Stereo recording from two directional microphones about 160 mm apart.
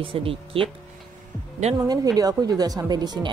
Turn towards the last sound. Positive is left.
turn(degrees=-25)  # may be behind; listen again after turning